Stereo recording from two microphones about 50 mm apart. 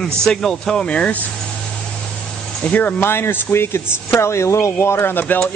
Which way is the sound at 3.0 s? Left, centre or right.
Left.